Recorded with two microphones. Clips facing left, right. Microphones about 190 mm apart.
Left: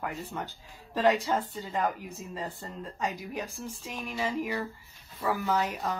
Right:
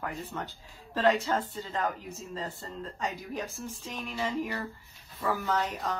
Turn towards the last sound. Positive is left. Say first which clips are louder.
# left 1 dB
turn(degrees=10)  # may be behind; listen again after turning